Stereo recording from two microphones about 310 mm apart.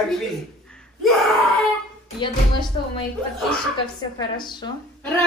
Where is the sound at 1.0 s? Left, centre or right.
Centre.